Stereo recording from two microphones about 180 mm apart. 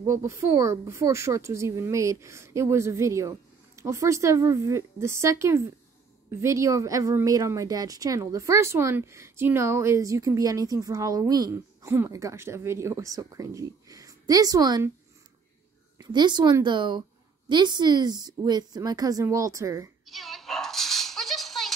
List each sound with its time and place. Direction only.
0.0 s speech: 15° right (ahead or behind)
16.0 s a woman's voice: 25° right (ahead or behind)
20.1 s music: centre (ahead or behind)